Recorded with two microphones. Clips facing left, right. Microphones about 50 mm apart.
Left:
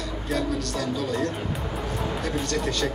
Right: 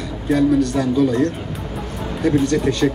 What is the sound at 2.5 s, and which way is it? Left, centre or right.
Speech, right.